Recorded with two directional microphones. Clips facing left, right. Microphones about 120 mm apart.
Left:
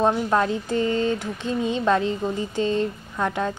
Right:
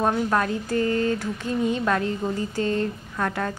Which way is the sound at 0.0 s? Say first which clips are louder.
Left 2 dB; 25° left (ahead or behind).